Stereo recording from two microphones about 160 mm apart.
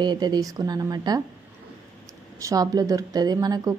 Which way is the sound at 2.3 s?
20° right (ahead or behind).